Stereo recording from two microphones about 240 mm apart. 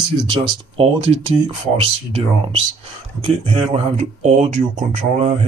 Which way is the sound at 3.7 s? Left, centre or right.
Right.